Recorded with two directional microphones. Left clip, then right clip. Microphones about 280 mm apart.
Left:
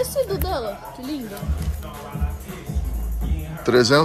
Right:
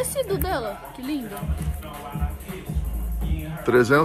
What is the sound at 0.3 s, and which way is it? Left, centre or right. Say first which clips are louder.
Speech: left 1 dB; right.